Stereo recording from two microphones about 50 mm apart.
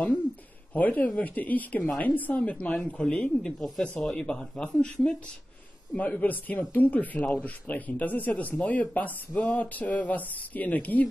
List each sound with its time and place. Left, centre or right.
0.7 s speech: left
3.5 s speech: centre
4.2 s speech: centre
5.9 s speech: left